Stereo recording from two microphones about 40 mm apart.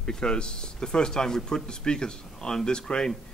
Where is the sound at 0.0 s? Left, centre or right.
Left.